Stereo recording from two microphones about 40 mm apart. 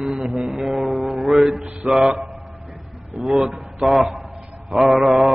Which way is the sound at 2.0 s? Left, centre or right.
Centre.